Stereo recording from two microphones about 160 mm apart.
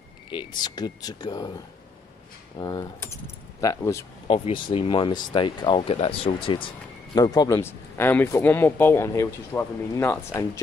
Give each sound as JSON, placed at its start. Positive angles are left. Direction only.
{"t": 0.3, "sound": "speech", "side_deg": 30}
{"t": 2.5, "sound": "speech", "side_deg": 25}
{"t": 4.3, "sound": "speech", "side_deg": 35}
{"t": 7.2, "sound": "speech", "side_deg": 25}